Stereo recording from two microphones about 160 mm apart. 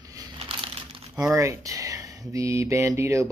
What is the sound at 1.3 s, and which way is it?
Speech, 20° right (ahead or behind).